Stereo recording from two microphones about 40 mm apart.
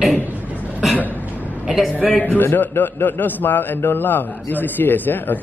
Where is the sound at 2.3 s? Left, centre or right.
Left.